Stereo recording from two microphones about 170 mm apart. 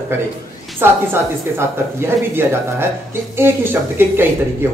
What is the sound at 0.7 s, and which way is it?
Speech, 15° right (ahead or behind).